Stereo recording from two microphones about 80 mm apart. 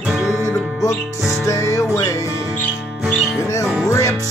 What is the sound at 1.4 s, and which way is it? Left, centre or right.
Music, left.